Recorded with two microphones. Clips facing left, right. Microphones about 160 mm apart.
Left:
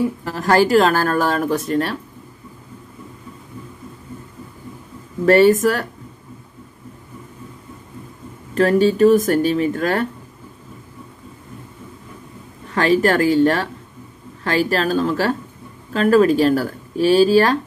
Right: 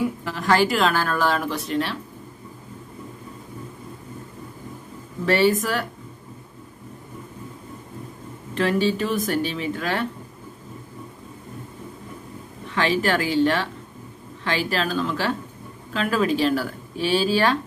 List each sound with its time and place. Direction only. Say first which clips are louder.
0.2 s speech: left 5 dB; 40° left (ahead or behind)
5.2 s speech: left 7 dB; 45° left (ahead or behind)
8.5 s speech: left 7 dB; 45° left (ahead or behind)
12.6 s speech: left 6 dB; 45° left (ahead or behind)